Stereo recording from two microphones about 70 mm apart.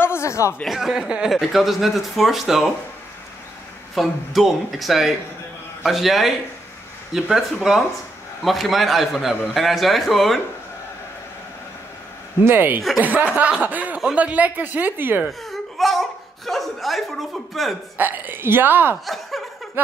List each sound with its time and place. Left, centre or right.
0.0 s a sound: left
0.7 s speech: centre
3.9 s speech: centre
8.5 s speech: centre
12.4 s a woman's voice: right
15.2 s speech: centre
17.9 s a woman's voice: right